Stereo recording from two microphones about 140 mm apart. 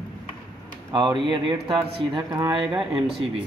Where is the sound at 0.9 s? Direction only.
35° right (ahead or behind).